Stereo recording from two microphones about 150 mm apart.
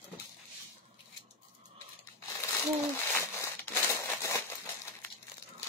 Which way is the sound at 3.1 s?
15° left (ahead or behind).